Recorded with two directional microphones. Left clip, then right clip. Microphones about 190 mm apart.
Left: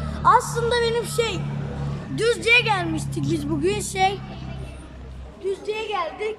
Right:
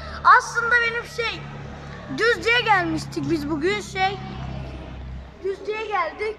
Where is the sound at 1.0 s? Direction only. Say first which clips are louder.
Left 3 dB; 45° left (ahead or behind).